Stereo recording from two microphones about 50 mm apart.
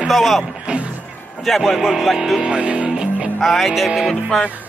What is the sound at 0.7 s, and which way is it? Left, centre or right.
Music, right.